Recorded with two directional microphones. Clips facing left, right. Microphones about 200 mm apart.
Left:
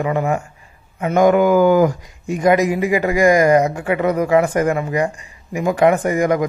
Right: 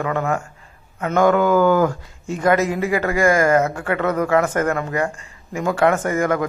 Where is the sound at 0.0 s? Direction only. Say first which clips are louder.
Left 3 dB; 15° left (ahead or behind).